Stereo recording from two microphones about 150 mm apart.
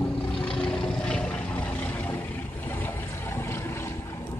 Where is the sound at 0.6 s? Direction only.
5° left (ahead or behind).